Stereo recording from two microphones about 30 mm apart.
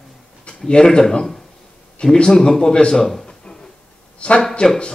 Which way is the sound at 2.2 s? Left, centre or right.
Left.